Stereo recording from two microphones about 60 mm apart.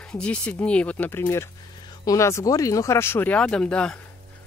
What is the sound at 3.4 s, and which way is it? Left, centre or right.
Speech, centre.